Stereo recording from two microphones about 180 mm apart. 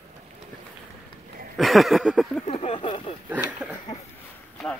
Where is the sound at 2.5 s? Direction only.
35° left (ahead or behind).